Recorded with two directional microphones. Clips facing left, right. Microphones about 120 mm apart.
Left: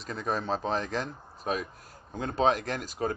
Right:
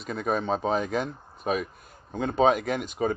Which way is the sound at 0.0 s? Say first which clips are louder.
Right 4 dB; 5° right (ahead or behind).